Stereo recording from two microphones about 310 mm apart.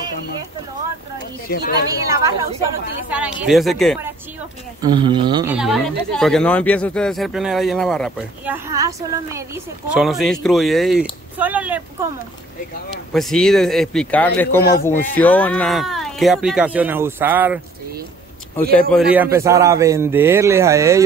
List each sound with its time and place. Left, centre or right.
1.5 s speech: left
2.0 s a man's voice: centre
4.8 s speech: centre
13.1 s speech: centre
14.6 s speech: left
14.9 s speech: centre
18.6 s a man's voice: centre